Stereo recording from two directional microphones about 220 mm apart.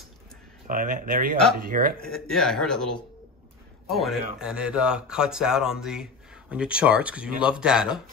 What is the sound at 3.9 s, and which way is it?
Speech, centre (ahead or behind).